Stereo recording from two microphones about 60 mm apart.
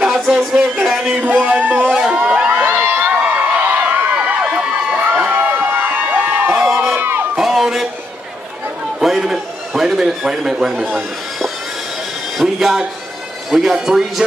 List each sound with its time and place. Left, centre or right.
0.1 s speech: centre
0.6 s music: centre
1.2 s music: right
2.0 s crowd: centre
2.6 s a sound: right
4.5 s run: right
5.7 s crowd: right
6.5 s crowd: centre
6.9 s crowd: right
7.3 s a sound: centre
9.0 s a sound: centre
10.8 s a sound: centre
13.5 s speech: centre